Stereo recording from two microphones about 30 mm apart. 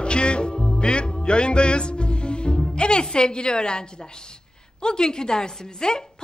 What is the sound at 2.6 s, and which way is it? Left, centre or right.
Music, left.